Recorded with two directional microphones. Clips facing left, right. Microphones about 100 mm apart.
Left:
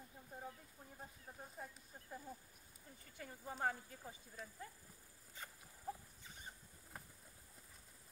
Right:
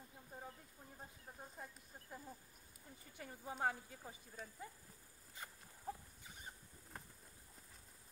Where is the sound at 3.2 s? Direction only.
10° right (ahead or behind).